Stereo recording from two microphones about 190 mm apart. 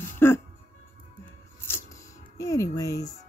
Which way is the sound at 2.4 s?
15° left (ahead or behind).